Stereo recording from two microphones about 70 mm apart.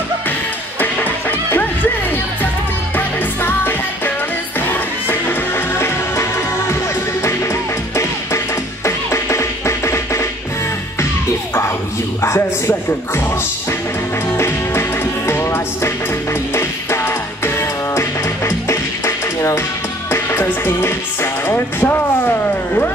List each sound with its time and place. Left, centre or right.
0.7 s music: left
3.0 s music: left
7.9 s music: left
12.2 s speech: left
14.3 s music: left